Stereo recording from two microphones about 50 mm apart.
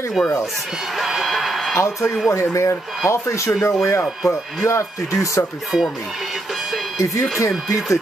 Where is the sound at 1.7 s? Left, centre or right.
Left.